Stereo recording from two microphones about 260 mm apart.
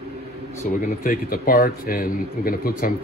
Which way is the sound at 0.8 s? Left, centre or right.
Left.